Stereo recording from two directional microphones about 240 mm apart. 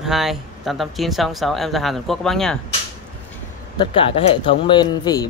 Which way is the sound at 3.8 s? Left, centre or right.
Left.